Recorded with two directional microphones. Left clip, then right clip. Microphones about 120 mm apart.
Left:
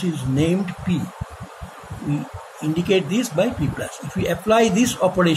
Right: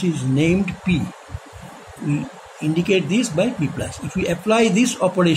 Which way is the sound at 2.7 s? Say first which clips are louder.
Right 1 dB; 25° right (ahead or behind).